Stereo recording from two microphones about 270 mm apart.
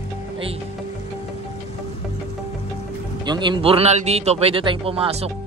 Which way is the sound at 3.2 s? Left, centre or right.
Centre.